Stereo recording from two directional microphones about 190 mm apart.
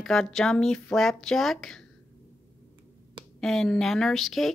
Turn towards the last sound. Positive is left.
turn(degrees=0)  # may be behind; listen again after turning